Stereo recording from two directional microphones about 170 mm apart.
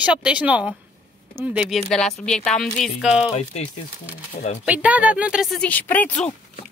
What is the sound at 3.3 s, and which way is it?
Speech, 40° left (ahead or behind).